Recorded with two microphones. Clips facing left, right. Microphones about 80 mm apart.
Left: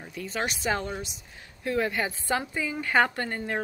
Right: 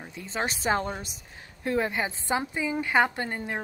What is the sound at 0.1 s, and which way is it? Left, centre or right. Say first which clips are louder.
A woman's voice: even; right.